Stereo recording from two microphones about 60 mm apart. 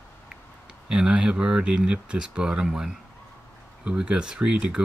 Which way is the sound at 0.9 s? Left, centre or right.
Centre.